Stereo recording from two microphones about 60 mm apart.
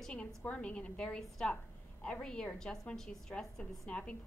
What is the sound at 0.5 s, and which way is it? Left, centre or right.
A woman's voice, centre.